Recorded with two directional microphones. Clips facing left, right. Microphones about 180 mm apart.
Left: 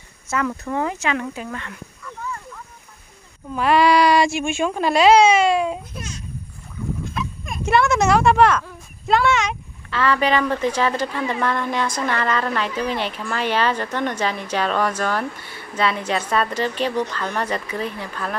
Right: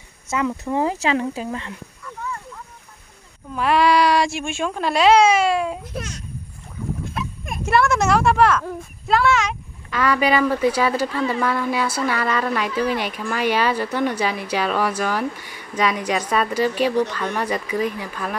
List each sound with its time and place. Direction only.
0.3 s a woman's voice: 15° right (ahead or behind)
0.7 s speech: 30° right (ahead or behind)
3.5 s speech: centre (ahead or behind)
5.9 s a child's voice: 70° right (ahead or behind)
7.2 s a sound: 55° right (ahead or behind)
7.6 s speech: centre (ahead or behind)
9.8 s a woman's voice: 10° right (ahead or behind)